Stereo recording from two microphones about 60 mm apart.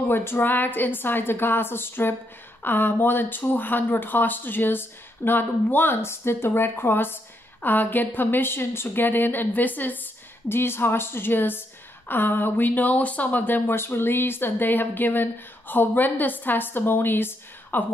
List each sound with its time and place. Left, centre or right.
0.1 s speech: left
10.5 s speech: left